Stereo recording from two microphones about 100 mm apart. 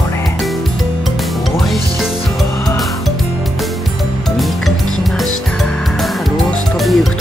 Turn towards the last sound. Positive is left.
turn(degrees=0)  # may be behind; listen again after turning